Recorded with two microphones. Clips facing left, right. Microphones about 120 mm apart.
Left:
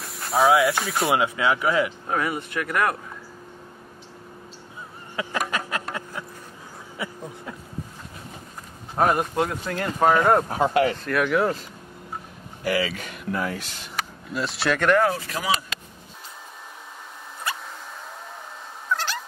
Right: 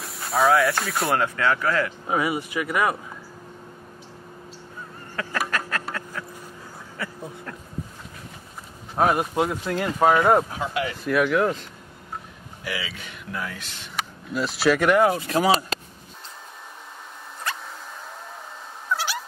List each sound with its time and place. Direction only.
0.0 s speech: centre (ahead or behind)
1.1 s speech: 10° left (ahead or behind)
2.0 s speech: 5° right (ahead or behind)
5.1 s a sound: 15° left (ahead or behind)
7.0 s speech: 15° left (ahead or behind)
8.9 s speech: centre (ahead or behind)
10.5 s speech: 45° left (ahead or behind)
11.1 s speech: centre (ahead or behind)
12.6 s speech: 50° left (ahead or behind)
13.9 s speech: centre (ahead or behind); by 15.3 s 20° right (ahead or behind)
15.3 s speech: 35° right (ahead or behind)
18.9 s cat: 10° right (ahead or behind)